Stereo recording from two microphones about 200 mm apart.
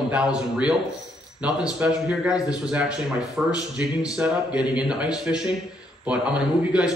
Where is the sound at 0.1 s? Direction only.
5° right (ahead or behind).